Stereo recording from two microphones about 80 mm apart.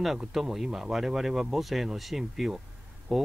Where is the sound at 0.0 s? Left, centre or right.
Centre.